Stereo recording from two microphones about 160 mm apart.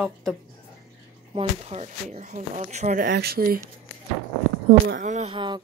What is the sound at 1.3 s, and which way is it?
Speech, 40° right (ahead or behind).